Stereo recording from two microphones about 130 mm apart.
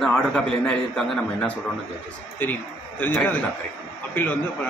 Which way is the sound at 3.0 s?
15° left (ahead or behind).